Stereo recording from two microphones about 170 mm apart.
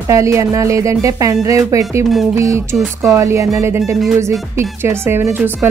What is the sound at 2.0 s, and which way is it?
Speech, centre (ahead or behind).